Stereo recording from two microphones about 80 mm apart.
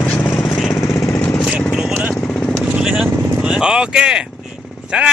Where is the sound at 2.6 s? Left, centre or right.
Centre.